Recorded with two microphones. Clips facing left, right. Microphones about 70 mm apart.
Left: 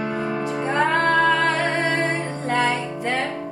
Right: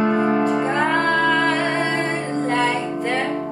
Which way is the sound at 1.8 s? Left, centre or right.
Centre.